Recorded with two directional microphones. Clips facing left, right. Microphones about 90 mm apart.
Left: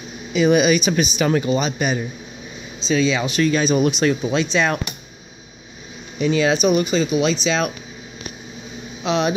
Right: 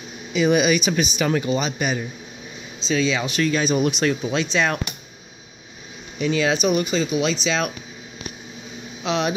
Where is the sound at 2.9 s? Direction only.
10° left (ahead or behind).